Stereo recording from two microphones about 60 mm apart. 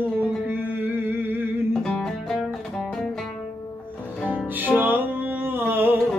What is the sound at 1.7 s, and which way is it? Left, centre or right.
Music, centre.